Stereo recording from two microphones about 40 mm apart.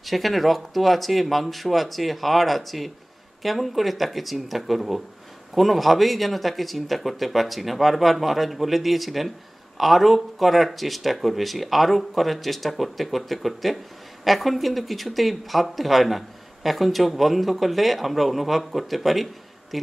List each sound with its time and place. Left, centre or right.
0.0 s speech: centre